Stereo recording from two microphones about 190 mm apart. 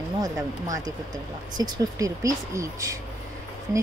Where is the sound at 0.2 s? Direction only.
20° right (ahead or behind).